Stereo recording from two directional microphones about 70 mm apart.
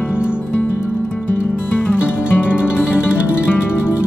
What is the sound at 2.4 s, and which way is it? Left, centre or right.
Music, centre.